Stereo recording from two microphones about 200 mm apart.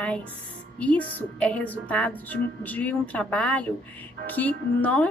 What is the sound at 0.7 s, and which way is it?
A woman's voice, 5° left (ahead or behind).